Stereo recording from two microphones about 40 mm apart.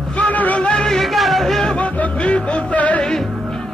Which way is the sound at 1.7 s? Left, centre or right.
Left.